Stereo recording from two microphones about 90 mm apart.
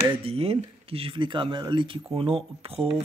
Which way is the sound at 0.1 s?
90° right.